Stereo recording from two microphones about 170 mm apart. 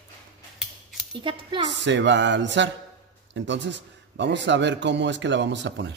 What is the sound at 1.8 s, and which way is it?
Speech, 90° right.